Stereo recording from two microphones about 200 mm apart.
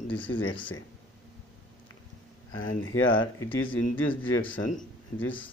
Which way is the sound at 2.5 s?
80° left.